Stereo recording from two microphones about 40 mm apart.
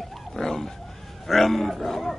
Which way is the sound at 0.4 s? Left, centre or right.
Centre.